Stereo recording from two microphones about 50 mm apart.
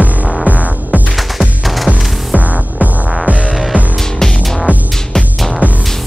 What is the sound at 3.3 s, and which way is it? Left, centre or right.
Music, right.